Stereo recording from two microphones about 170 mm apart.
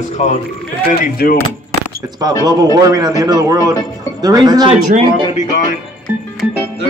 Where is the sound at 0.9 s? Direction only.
60° left (ahead or behind).